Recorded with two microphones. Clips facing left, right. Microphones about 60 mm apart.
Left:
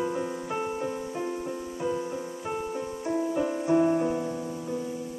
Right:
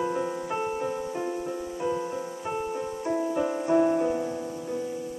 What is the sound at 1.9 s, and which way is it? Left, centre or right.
Music, centre.